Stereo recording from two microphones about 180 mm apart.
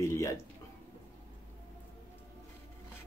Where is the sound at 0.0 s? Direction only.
15° left (ahead or behind).